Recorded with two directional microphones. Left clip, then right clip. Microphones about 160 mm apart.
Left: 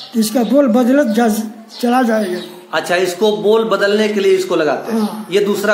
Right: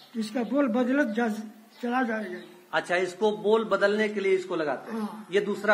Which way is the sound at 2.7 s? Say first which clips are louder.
Left 11 dB; 15° right (ahead or behind).